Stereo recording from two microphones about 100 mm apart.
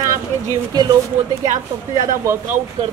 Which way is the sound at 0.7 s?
40° right (ahead or behind).